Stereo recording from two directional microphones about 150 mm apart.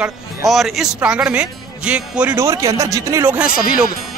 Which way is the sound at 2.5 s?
20° right (ahead or behind).